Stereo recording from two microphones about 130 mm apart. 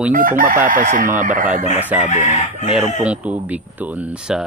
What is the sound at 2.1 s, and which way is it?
Chicken, 60° left (ahead or behind).